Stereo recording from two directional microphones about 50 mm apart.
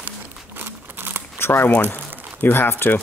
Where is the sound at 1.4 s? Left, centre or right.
Left.